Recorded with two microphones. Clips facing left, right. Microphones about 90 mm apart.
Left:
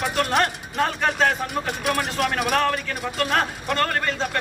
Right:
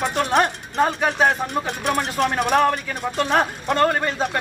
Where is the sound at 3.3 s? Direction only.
10° right (ahead or behind).